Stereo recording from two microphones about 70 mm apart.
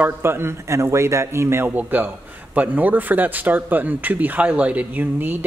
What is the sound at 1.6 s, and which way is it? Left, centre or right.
A man's voice, right.